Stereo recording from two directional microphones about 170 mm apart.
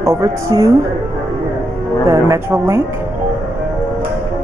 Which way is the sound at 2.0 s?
15° right (ahead or behind).